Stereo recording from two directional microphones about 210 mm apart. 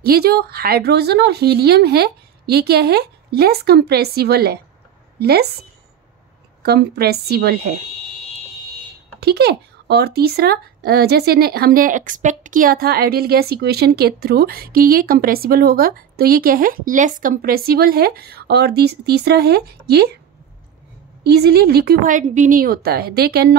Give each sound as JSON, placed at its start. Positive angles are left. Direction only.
{"t": 0.0, "sound": "speech", "side_deg": -50}
{"t": 6.6, "sound": "speech", "side_deg": -50}
{"t": 9.2, "sound": "speech", "side_deg": -50}
{"t": 21.2, "sound": "speech", "side_deg": -50}